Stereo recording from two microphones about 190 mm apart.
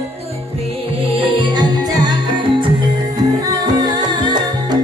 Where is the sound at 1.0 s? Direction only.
25° right (ahead or behind).